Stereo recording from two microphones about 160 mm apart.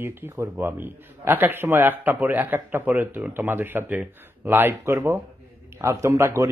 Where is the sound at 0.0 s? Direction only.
15° right (ahead or behind).